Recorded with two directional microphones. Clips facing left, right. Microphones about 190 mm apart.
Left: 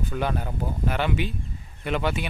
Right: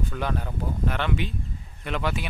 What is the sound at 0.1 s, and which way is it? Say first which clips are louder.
Speech: left 2 dB; 5° left (ahead or behind).